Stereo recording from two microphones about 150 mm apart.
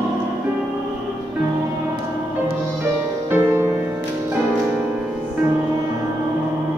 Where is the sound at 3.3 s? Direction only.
15° right (ahead or behind).